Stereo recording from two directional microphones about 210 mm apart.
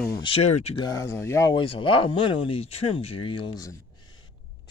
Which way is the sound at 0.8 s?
15° left (ahead or behind).